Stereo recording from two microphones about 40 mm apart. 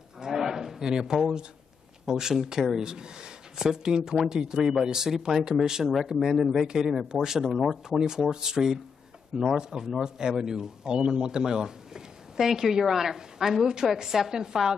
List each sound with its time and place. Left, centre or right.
0.2 s a sound: centre
2.0 s speech: centre
8.0 s speech: centre